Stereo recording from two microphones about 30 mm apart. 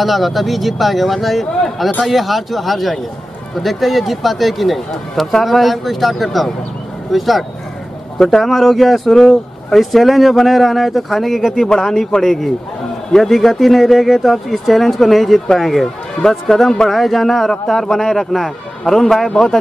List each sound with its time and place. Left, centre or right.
0.0 s a man's voice: centre
18.9 s a man's voice: centre